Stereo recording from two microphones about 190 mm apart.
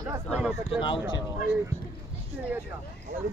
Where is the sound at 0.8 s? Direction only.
25° left (ahead or behind).